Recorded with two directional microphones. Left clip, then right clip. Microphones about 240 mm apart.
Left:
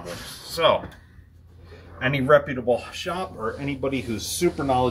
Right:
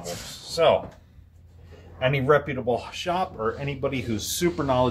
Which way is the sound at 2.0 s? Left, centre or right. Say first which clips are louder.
Left 2 dB; right.